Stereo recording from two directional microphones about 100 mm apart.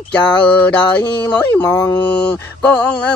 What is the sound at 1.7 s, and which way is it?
Speech, 35° left (ahead or behind).